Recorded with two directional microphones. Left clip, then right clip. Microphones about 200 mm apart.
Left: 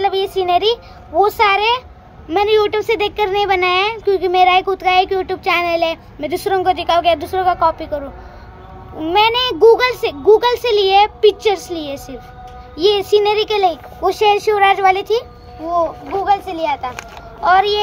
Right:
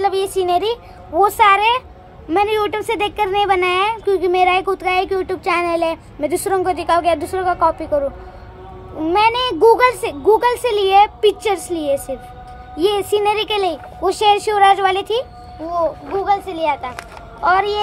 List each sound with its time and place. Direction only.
0.0 s a woman's voice: 15° right (ahead or behind)
9.1 s a woman's voice: 10° right (ahead or behind)